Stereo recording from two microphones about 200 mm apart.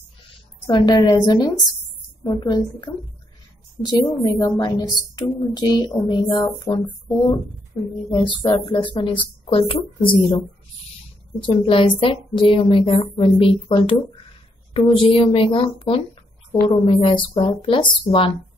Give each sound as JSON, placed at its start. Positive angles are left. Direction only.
{"t": 0.7, "sound": "a woman's voice", "side_deg": 20}
{"t": 11.4, "sound": "a woman's voice", "side_deg": 25}